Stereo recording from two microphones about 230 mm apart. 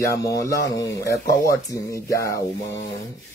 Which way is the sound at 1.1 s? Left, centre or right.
Left.